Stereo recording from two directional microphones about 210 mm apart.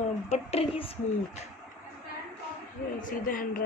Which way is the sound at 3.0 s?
40° left (ahead or behind).